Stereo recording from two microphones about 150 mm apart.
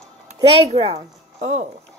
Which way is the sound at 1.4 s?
50° right (ahead or behind).